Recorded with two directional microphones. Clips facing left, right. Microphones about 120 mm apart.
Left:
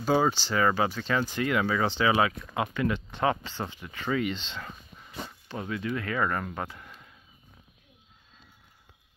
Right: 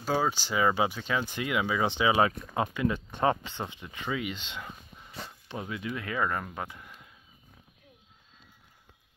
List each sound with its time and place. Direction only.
0.0 s speech: centre (ahead or behind); by 2.2 s 20° right (ahead or behind)
2.2 s speech: 30° right (ahead or behind)
2.7 s speech: 20° right (ahead or behind)
4.1 s speech: 10° right (ahead or behind)